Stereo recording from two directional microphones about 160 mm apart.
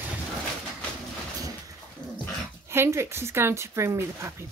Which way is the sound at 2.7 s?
15° right (ahead or behind).